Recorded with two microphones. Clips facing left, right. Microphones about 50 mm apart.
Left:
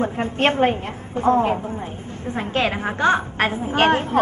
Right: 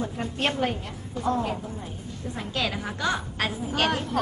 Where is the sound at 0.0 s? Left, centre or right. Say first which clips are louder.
Left 8 dB; left.